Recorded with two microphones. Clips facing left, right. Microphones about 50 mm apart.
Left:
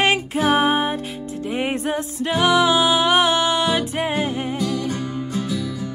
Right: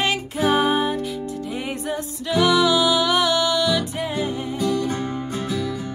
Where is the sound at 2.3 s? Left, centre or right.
Left.